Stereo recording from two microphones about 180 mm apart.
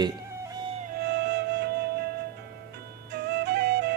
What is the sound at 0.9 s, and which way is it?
Music, 65° right (ahead or behind).